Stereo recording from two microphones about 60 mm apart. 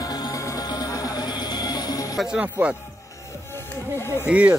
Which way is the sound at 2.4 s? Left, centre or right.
Right.